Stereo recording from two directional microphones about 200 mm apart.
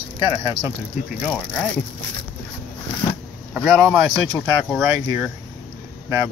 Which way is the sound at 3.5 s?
Centre (ahead or behind).